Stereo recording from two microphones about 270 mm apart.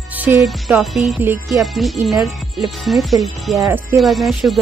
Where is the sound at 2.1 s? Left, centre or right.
Centre.